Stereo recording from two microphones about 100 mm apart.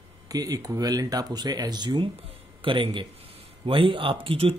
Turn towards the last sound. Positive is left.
turn(degrees=-65)  # may be behind; listen again after turning